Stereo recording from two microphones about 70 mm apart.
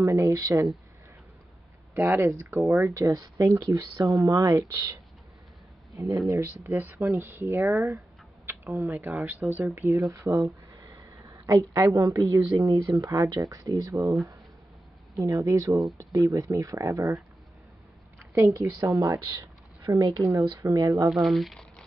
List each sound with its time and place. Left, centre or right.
0.0 s speech: right
2.0 s speech: right
3.1 s speech: right
5.9 s speech: right
6.6 s speech: right
8.9 s speech: right
9.8 s a sound: right
11.9 s speech: right
15.1 s speech: right
18.3 s a woman's voice: right
18.8 s speech: right
21.3 s speech: centre